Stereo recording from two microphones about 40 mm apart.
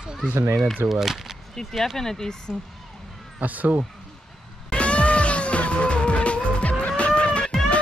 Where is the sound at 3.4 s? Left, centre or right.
Right.